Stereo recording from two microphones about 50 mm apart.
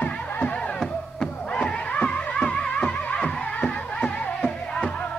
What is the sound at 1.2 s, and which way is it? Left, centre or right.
Music, centre.